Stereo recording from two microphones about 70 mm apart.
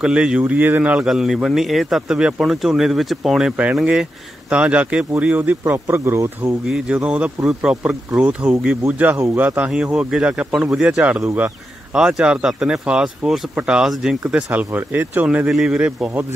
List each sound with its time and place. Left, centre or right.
0.0 s speech: centre
0.9 s speech: centre; by 5.6 s right
5.6 s speech: right
6.9 s speech: centre
7.4 s speech: centre
9.1 s speech: right
9.8 s speech: centre
14.5 s speech: right
15.2 s speech: centre